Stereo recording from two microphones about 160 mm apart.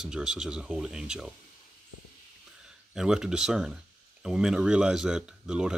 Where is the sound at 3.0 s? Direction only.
5° right (ahead or behind).